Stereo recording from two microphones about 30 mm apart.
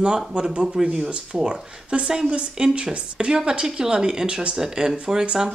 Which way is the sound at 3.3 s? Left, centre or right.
Right.